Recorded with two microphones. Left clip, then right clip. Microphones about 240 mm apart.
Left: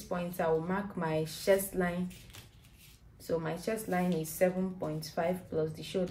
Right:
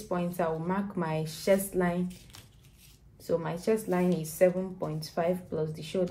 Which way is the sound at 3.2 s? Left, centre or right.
Right.